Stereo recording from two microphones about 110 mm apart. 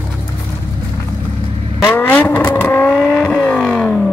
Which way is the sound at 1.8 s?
20° left (ahead or behind).